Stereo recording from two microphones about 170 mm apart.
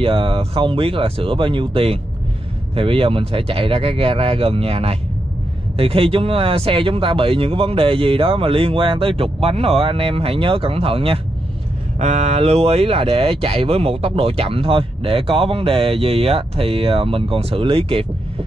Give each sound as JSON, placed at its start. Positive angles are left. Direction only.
{"t": 0.0, "sound": "speech", "side_deg": -30}